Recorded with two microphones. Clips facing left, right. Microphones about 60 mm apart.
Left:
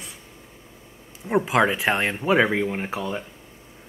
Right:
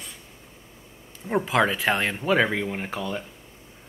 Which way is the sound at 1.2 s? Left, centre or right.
Centre.